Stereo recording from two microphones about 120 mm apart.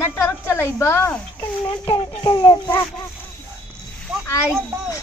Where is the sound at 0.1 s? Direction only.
20° left (ahead or behind).